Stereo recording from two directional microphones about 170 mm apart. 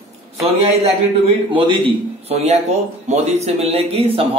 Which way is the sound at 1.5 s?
30° right (ahead or behind).